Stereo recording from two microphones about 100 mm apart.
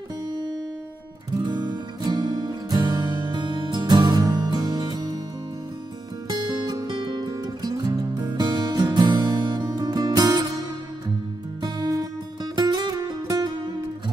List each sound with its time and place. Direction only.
1.3 s music: 45° right (ahead or behind)
6.2 s music: 45° right (ahead or behind)
11.6 s music: 40° right (ahead or behind)